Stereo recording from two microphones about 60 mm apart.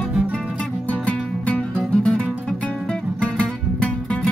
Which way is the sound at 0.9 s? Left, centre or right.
Left.